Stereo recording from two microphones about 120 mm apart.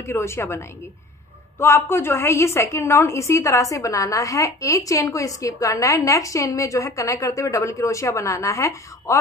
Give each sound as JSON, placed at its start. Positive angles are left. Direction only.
{"t": 0.0, "sound": "a woman's voice", "side_deg": 20}